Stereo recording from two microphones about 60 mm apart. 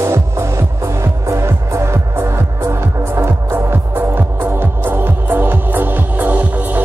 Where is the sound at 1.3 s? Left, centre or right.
Right.